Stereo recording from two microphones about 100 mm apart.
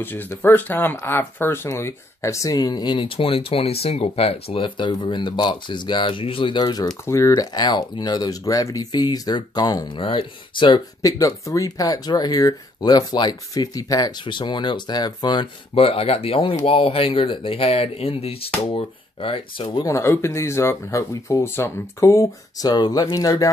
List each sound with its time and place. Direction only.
0.0 s speech: 20° left (ahead or behind); by 6.6 s 60° left (ahead or behind)
6.6 s speech: 40° left (ahead or behind)
7.1 s speech: 30° left (ahead or behind)
7.3 s speech: 45° left (ahead or behind)
9.9 s speech: 60° left (ahead or behind)
11.0 s speech: 35° left (ahead or behind)
14.2 s speech: 50° left (ahead or behind)
15.7 s speech: 70° left (ahead or behind)
19.1 s speech: 70° left (ahead or behind)
19.8 s speech: 30° left (ahead or behind)